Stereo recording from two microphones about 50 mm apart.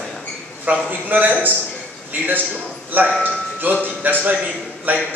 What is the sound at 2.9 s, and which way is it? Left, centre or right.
A man's voice, right.